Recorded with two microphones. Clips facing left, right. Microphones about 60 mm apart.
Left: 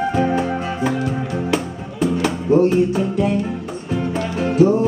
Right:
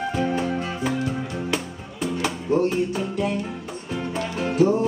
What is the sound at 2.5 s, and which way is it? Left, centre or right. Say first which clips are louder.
Music: left 7 dB; centre.